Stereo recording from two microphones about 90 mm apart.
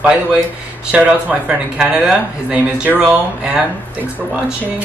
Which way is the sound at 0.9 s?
15° right (ahead or behind).